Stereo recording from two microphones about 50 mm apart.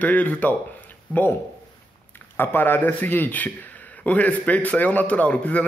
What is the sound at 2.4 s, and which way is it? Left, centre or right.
A man's voice, left.